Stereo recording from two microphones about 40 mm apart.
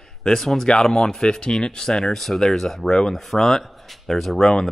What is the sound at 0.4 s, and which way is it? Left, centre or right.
Speech, centre.